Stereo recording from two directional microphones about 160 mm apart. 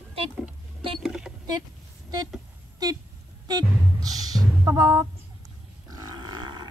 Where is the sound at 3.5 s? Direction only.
25° right (ahead or behind).